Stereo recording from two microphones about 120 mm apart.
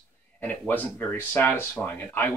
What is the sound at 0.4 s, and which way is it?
Speech, 15° left (ahead or behind).